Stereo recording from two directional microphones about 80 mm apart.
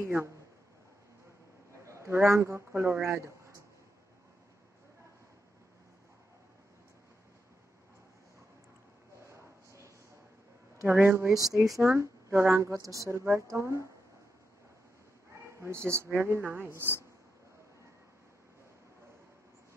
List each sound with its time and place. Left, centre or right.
0.0 s speech: right
1.9 s speech: right
9.3 s a sound: right
10.9 s speech: right
15.4 s speech: right